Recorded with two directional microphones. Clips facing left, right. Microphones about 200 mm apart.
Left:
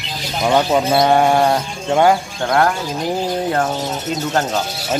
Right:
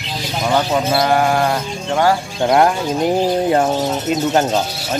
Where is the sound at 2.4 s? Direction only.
20° right (ahead or behind).